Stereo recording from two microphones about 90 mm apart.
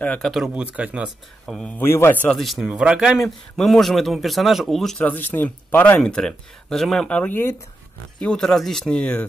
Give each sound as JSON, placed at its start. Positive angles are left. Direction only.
{"t": 0.2, "sound": "speech", "side_deg": 0}
{"t": 0.7, "sound": "speech", "side_deg": -15}
{"t": 1.8, "sound": "speech", "side_deg": 25}
{"t": 2.2, "sound": "speech", "side_deg": 5}
{"t": 4.9, "sound": "speech", "side_deg": 20}
{"t": 6.0, "sound": "speech", "side_deg": 5}